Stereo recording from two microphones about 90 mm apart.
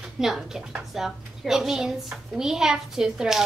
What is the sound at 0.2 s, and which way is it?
A woman's voice, 5° right (ahead or behind).